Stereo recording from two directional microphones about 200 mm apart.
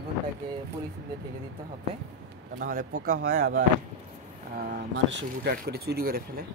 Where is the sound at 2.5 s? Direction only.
45° right (ahead or behind).